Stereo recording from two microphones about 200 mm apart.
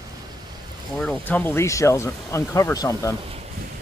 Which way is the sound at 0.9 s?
5° left (ahead or behind).